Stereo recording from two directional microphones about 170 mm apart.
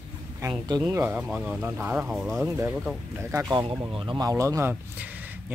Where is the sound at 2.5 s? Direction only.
15° right (ahead or behind).